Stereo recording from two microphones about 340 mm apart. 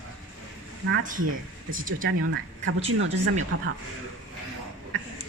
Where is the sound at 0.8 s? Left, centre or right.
Right.